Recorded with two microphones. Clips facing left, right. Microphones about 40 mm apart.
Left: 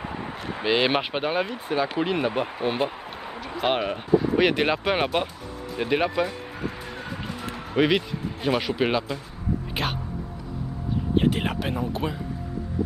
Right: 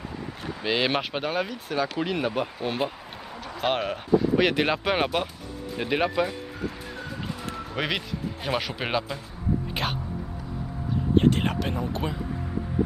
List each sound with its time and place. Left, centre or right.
0.0 s a sound: left
0.7 s speech: centre
5.8 s music: centre
9.8 s speech: centre
11.1 s speech: centre